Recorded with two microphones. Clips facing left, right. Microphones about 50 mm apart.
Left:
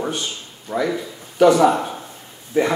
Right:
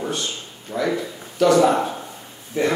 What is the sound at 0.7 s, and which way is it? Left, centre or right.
Speech, centre.